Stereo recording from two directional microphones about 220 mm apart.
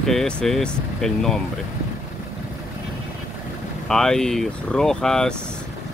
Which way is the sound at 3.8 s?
Centre (ahead or behind).